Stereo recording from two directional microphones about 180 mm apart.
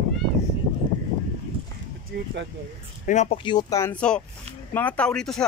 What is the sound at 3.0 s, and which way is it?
Speech, 40° left (ahead or behind).